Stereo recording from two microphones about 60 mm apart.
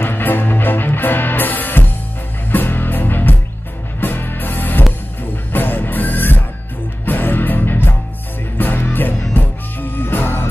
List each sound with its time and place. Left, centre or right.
0.0 s music: left